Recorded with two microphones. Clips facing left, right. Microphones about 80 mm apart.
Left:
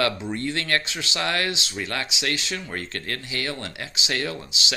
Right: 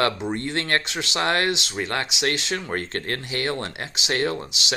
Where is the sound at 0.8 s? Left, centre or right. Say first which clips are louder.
Right 3 dB; right.